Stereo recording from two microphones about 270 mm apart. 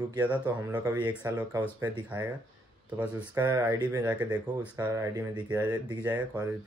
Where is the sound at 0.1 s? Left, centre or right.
Centre.